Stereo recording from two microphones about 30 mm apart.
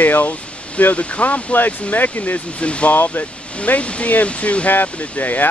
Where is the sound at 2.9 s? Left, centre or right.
Left.